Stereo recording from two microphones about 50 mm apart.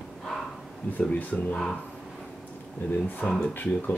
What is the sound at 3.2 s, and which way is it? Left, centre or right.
Speech, centre.